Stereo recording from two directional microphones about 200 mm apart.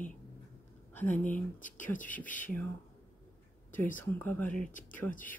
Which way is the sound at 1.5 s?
40° left (ahead or behind).